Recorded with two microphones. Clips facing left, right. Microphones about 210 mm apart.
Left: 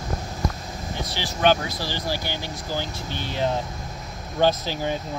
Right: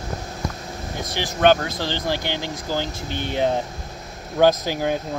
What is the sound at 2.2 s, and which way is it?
Speech, 20° right (ahead or behind).